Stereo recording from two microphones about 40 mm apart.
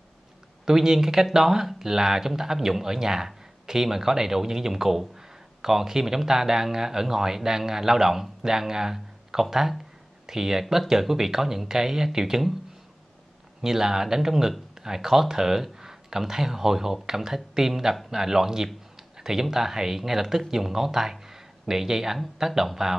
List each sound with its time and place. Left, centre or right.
0.7 s speech: centre
13.6 s speech: centre
19.1 s a sound: centre
19.5 s speech: centre